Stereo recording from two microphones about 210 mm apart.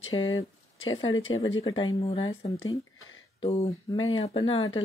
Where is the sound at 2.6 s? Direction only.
70° left (ahead or behind).